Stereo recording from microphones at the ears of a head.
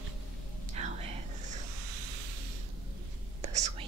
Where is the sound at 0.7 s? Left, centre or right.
Right.